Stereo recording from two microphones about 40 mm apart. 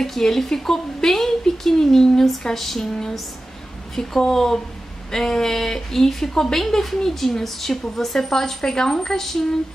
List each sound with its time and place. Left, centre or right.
0.0 s speech: centre